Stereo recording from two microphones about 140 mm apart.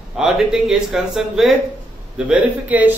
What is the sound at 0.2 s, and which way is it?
A man's voice, 5° right (ahead or behind).